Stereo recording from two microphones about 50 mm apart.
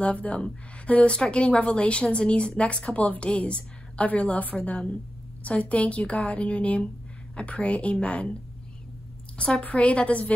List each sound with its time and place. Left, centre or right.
0.0 s a woman's voice: left
9.4 s a woman's voice: left